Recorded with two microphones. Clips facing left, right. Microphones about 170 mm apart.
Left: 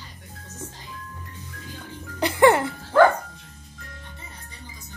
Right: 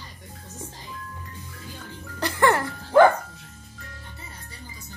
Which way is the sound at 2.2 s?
15° left (ahead or behind).